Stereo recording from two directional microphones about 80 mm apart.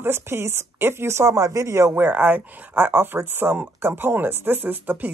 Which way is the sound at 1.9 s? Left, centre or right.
Right.